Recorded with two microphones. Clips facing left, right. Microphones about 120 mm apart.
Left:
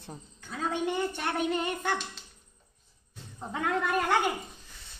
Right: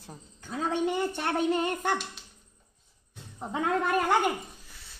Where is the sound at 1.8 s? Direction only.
15° right (ahead or behind).